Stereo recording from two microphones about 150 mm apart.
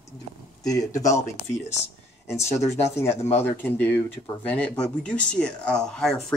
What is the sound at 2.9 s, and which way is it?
Speech, 15° left (ahead or behind).